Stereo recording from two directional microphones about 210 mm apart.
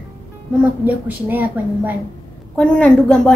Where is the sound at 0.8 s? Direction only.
10° right (ahead or behind).